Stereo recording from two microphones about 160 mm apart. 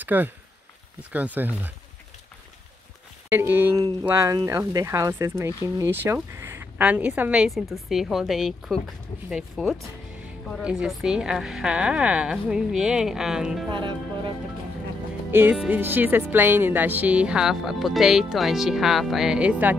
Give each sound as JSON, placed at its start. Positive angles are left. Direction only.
{"t": 0.0, "sound": "speech", "side_deg": -10}
{"t": 3.3, "sound": "a woman's voice", "side_deg": -15}
{"t": 13.7, "sound": "speech", "side_deg": -30}
{"t": 15.3, "sound": "speech", "side_deg": -10}